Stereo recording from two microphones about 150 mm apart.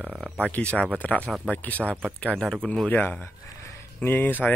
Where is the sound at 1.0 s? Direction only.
10° left (ahead or behind).